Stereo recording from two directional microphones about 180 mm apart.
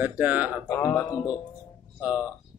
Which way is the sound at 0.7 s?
15° left (ahead or behind).